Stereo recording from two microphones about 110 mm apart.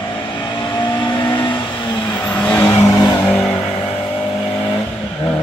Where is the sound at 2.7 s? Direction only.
30° left (ahead or behind).